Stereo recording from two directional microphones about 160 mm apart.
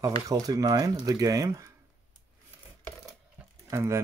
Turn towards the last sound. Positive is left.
turn(degrees=-15)  # may be behind; listen again after turning